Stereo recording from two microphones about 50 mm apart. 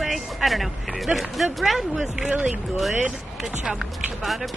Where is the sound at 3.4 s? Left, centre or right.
Centre.